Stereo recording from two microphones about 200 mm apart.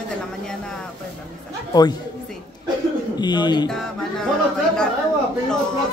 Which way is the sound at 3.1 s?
20° left (ahead or behind).